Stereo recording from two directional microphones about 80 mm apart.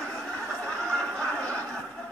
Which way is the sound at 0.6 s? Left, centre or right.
Centre.